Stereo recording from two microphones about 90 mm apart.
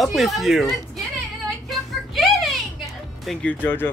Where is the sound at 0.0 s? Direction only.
Centre (ahead or behind).